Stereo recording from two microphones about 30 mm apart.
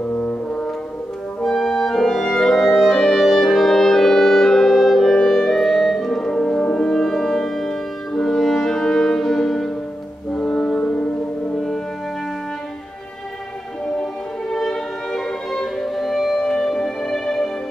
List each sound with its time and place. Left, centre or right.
0.1 s brass instrument: left
1.5 s music: centre
1.9 s clarinet: centre
3.3 s music: centre
6.6 s french horn: left
6.9 s music: centre
10.3 s music: left
14.5 s violin: centre
16.0 s music: centre
16.3 s music: centre